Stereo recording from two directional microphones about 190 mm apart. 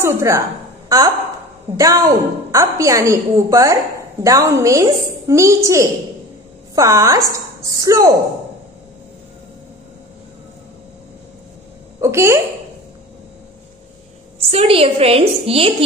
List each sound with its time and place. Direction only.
0.0 s a woman's voice: 15° right (ahead or behind)
12.0 s a woman's voice: 15° right (ahead or behind)
14.5 s a woman's voice: 30° right (ahead or behind)